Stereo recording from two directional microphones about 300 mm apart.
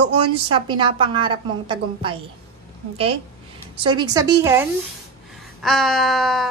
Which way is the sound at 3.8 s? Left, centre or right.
Centre.